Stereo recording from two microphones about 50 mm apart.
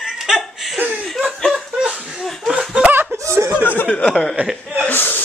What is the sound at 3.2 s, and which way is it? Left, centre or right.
Chuckle, right.